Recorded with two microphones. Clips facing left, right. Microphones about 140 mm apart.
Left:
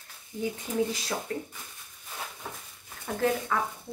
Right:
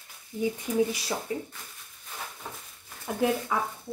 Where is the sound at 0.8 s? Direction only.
10° right (ahead or behind).